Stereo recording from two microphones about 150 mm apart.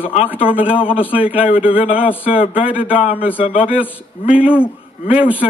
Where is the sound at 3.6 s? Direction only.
10° right (ahead or behind).